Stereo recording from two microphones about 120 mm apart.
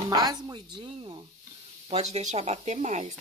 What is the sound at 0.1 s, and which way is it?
Speech, 35° right (ahead or behind).